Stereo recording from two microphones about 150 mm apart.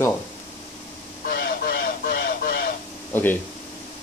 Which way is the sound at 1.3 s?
85° left.